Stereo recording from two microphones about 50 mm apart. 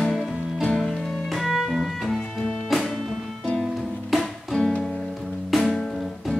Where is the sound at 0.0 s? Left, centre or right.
Centre.